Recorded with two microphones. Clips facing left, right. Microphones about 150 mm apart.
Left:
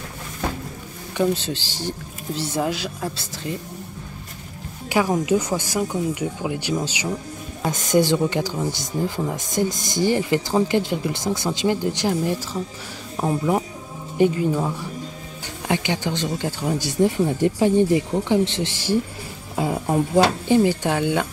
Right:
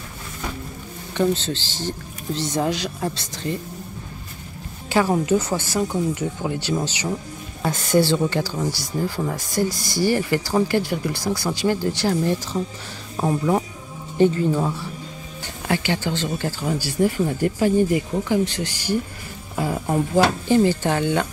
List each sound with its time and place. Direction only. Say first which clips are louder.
1.1 s speech: even; 10° left (ahead or behind)
4.8 s music: right 1 dB; 15° left (ahead or behind)
5.2 s speech: even; 10° left (ahead or behind)